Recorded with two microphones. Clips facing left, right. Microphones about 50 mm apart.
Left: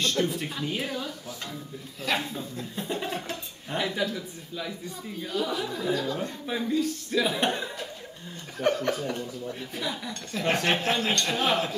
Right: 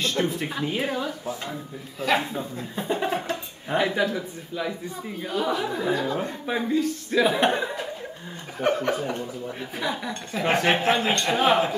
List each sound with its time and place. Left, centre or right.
0.0 s a man's voice: centre
2.0 s a man's voice: centre